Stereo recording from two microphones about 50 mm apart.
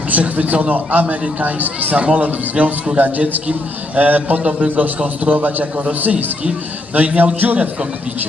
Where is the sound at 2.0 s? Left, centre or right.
Right.